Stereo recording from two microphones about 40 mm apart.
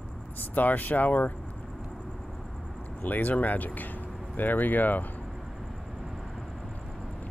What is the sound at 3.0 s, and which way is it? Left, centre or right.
Speech, left.